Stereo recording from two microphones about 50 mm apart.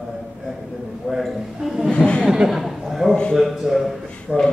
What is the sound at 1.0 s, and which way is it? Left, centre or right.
Speech, centre.